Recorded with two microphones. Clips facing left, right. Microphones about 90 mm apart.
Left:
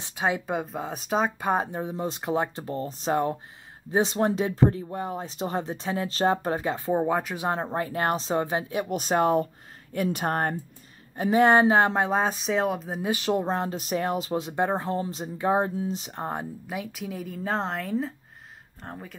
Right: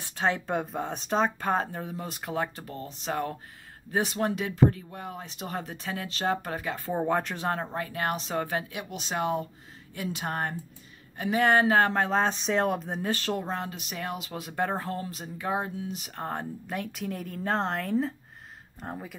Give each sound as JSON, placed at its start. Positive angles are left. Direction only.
{"t": 0.1, "sound": "speech", "side_deg": 10}
{"t": 7.0, "sound": "speech", "side_deg": 5}
{"t": 7.6, "sound": "speech", "side_deg": 30}
{"t": 8.8, "sound": "speech", "side_deg": 45}
{"t": 11.1, "sound": "speech", "side_deg": 30}
{"t": 13.5, "sound": "speech", "side_deg": 35}
{"t": 16.1, "sound": "speech", "side_deg": 15}
{"t": 16.6, "sound": "a woman's voice", "side_deg": 5}